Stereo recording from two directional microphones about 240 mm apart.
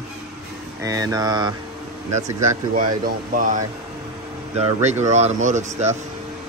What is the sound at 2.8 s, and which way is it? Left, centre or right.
Speech, right.